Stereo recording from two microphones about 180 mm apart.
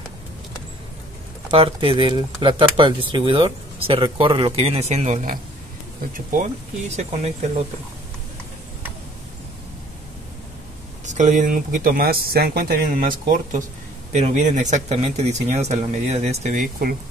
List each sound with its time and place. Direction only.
1.5 s speech: 30° right (ahead or behind)
11.1 s speech: 45° right (ahead or behind)